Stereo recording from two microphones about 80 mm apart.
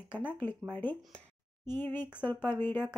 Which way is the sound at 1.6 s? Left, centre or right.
Left.